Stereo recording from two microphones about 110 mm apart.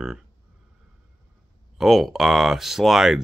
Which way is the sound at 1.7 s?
Centre (ahead or behind).